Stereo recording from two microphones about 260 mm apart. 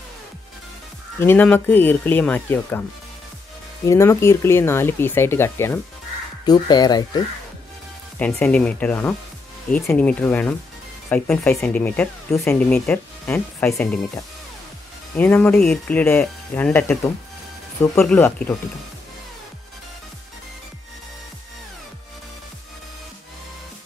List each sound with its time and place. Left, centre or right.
1.2 s speech: centre
3.8 s speech: centre
8.2 s speech: centre
15.1 s speech: centre